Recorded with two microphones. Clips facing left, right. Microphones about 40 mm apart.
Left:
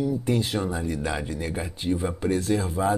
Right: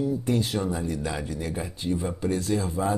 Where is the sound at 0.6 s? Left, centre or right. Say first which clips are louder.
Left 1 dB; left.